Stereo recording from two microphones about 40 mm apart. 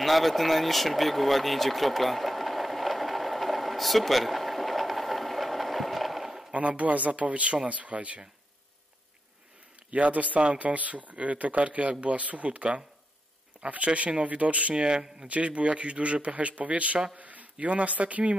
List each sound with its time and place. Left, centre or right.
0.0 s a sound: centre
6.5 s a man's voice: right
9.8 s a man's voice: right
14.9 s speech: centre
15.2 s a man's voice: right